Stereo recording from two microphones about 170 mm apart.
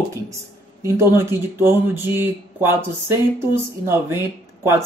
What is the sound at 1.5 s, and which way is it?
Speech, 10° right (ahead or behind).